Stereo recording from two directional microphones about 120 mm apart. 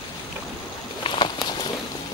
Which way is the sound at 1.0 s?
40° left (ahead or behind).